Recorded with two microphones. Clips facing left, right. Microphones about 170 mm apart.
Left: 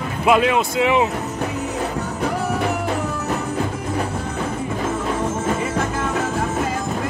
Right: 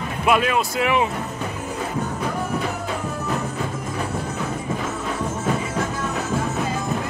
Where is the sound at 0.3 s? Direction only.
20° left (ahead or behind).